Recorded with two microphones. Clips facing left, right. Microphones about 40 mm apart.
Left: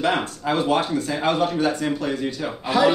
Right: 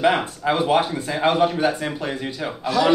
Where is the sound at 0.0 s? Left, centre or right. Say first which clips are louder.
Right 3 dB; centre.